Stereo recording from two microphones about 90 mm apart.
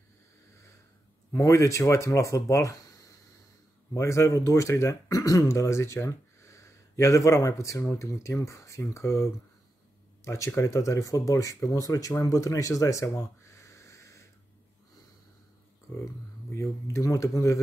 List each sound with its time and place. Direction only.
1.3 s speech: 35° left (ahead or behind)
3.9 s speech: 35° left (ahead or behind)
12.2 s a sound: 40° left (ahead or behind)
16.5 s speech: 35° left (ahead or behind)